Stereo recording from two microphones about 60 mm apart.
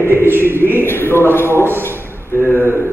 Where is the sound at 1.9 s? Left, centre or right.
Right.